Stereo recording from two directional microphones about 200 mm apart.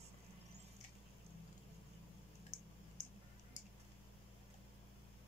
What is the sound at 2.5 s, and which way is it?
Tick, 40° left (ahead or behind).